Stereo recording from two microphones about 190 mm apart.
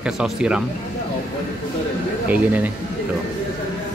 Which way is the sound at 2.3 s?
10° right (ahead or behind).